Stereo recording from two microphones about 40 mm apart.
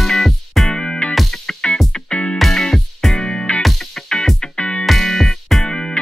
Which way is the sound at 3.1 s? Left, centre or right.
Centre.